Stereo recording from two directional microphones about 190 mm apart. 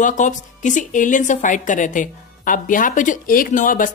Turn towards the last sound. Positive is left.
turn(degrees=45)  # may be behind; listen again after turning